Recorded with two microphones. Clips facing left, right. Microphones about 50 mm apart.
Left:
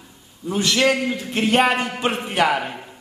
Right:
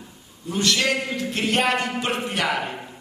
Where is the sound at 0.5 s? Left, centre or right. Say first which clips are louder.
Left 3 dB; centre.